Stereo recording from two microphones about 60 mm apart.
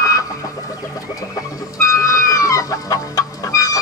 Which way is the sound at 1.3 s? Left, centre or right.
Left.